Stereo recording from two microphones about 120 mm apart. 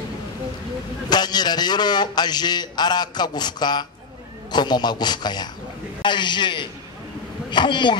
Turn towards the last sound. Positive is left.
turn(degrees=40)  # may be behind; listen again after turning